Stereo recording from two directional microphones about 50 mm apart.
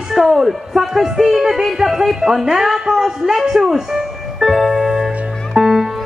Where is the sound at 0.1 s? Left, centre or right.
Centre.